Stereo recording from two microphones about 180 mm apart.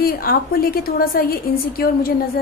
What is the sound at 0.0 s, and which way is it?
A woman's voice, 55° left (ahead or behind).